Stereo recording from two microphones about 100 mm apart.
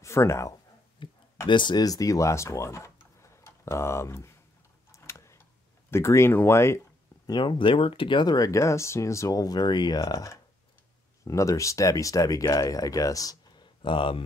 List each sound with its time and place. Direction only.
0.0 s speech: 25° left (ahead or behind)
1.0 s a sound: 55° left (ahead or behind)
1.5 s speech: 50° left (ahead or behind); by 4.4 s 30° left (ahead or behind)
4.9 s tick-tock: 30° left (ahead or behind)
5.9 s speech: 30° left (ahead or behind)
7.2 s speech: 50° left (ahead or behind)
8.5 s speech: 30° left (ahead or behind)
13.8 s speech: 60° left (ahead or behind)